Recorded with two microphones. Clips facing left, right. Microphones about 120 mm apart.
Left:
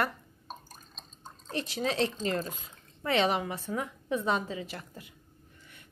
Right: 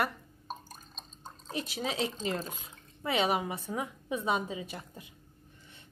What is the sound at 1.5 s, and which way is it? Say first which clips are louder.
A woman's voice: left 3 dB; 5° right (ahead or behind).